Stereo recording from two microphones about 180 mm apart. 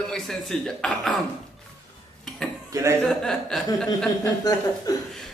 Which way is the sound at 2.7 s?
15° right (ahead or behind).